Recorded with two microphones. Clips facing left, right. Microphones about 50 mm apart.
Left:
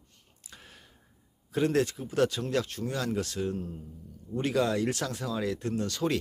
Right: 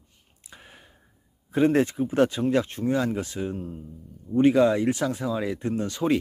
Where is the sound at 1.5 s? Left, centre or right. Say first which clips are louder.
Right 6 dB; right.